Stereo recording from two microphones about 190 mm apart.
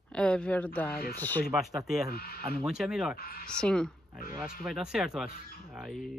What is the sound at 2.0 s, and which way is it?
Speech, 50° left (ahead or behind).